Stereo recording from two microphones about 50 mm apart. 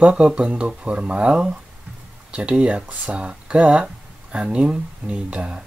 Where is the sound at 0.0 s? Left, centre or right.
Centre.